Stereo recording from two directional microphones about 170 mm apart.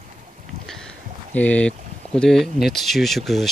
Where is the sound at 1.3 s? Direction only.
10° left (ahead or behind).